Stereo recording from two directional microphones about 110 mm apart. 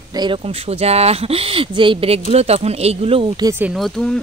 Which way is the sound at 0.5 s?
65° right (ahead or behind).